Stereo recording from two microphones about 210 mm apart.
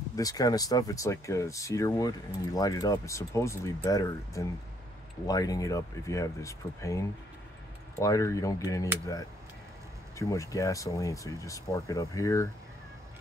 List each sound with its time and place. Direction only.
0.1 s speech: 15° left (ahead or behind)
10.1 s speech: 15° left (ahead or behind)